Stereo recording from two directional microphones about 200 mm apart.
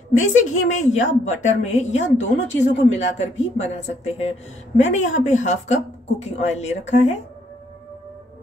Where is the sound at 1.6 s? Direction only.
35° left (ahead or behind).